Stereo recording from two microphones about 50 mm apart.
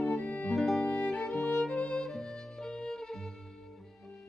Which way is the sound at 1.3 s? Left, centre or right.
Centre.